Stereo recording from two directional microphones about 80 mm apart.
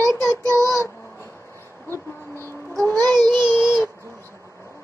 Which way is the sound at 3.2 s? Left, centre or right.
Centre.